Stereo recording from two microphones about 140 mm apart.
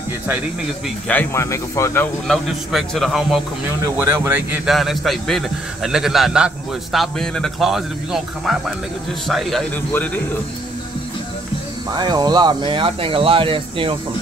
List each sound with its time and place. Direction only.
1.0 s speech: 15° left (ahead or behind)
2.2 s a man's voice: centre (ahead or behind)
3.9 s speech: 15° right (ahead or behind)
4.6 s a man's voice: centre (ahead or behind)
12.0 s speech: 30° right (ahead or behind)